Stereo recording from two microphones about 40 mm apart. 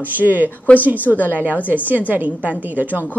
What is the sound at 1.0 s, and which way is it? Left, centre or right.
Speech, left.